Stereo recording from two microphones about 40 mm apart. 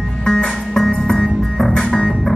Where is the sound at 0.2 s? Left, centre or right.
Left.